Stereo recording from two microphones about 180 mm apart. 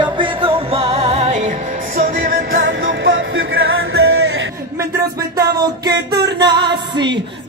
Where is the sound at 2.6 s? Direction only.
90° right.